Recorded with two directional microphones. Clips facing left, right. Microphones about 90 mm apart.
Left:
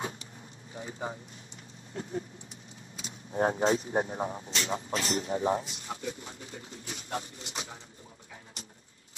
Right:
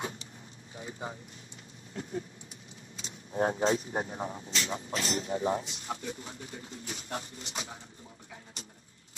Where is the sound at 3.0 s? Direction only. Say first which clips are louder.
Left 1 dB; 30° left (ahead or behind).